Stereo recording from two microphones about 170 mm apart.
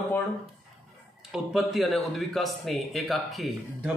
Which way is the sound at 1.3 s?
5° right (ahead or behind).